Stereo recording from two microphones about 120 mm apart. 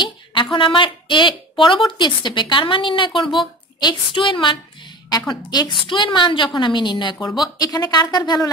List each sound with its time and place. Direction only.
0.0 s a woman's voice: 40° left (ahead or behind)